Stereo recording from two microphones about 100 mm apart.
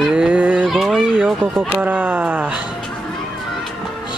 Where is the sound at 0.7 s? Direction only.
5° right (ahead or behind).